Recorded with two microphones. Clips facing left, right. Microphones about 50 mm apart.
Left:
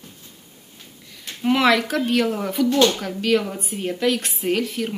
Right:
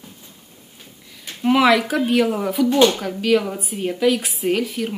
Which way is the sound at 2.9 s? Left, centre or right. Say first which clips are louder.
Right 2 dB; centre.